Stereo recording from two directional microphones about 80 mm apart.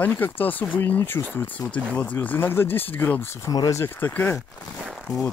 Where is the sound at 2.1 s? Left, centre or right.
Left.